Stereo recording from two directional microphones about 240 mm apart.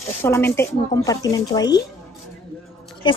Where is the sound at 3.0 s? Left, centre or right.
Centre.